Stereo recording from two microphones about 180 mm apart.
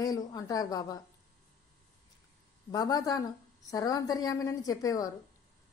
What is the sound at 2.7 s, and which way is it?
A woman's voice, 20° left (ahead or behind).